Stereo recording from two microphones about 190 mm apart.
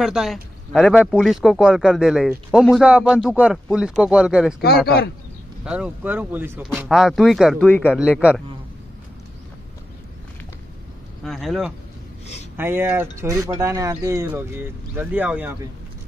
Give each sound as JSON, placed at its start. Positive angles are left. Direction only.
{"t": 0.0, "sound": "speech", "side_deg": 0}
{"t": 4.8, "sound": "speech", "side_deg": 55}
{"t": 5.7, "sound": "speech", "side_deg": -5}
{"t": 7.6, "sound": "speech", "side_deg": 10}
{"t": 7.9, "sound": "speech", "side_deg": -5}
{"t": 11.2, "sound": "speech", "side_deg": 0}
{"t": 12.5, "sound": "speech", "side_deg": -10}